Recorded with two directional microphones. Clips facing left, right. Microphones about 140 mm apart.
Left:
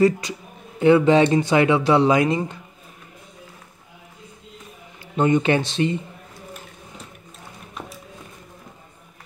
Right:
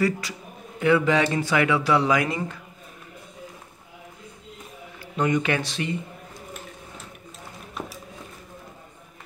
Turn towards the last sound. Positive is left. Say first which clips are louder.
# right 2 dB
turn(degrees=0)  # may be behind; listen again after turning